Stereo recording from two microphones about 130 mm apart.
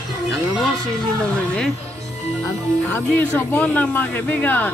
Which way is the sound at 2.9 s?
15° left (ahead or behind).